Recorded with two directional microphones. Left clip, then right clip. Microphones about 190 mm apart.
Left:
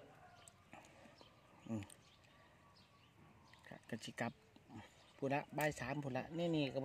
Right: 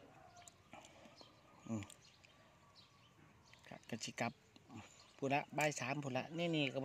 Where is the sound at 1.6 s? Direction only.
Centre (ahead or behind).